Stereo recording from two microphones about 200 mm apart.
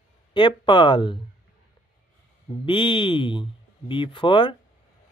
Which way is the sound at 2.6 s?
25° left (ahead or behind).